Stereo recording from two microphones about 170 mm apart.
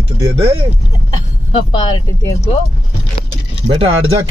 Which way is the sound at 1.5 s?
30° left (ahead or behind).